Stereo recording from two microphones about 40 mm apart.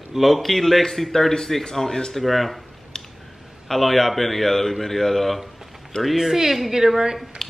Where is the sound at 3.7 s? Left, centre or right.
Centre.